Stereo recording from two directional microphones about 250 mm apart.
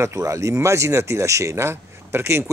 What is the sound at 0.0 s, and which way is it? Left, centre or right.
Speech, centre.